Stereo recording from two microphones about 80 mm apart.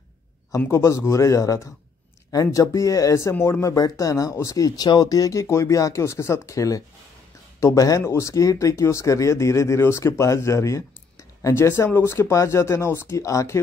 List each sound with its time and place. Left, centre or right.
0.7 s speech: left
3.6 s speech: left